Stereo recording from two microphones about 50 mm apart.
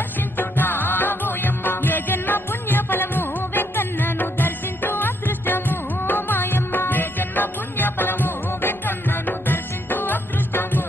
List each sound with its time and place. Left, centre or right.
0.4 s music: left